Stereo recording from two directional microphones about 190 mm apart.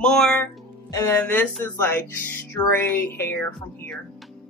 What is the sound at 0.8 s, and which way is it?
Speech, 15° left (ahead or behind).